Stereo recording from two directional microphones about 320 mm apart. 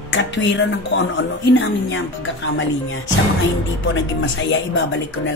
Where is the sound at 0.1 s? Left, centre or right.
Left.